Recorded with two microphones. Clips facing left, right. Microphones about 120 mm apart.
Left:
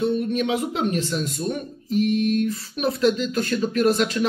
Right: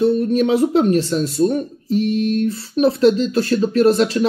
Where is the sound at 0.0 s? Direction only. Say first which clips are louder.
Right 7 dB; 35° right (ahead or behind).